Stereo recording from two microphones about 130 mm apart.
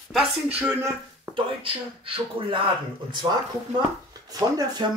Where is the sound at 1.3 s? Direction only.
40° right (ahead or behind).